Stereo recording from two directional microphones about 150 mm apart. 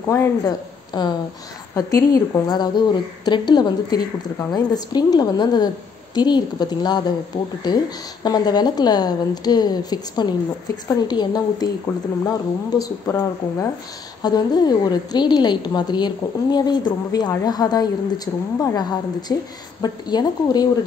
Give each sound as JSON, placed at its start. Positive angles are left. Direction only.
{"t": 0.1, "sound": "a woman's voice", "side_deg": 20}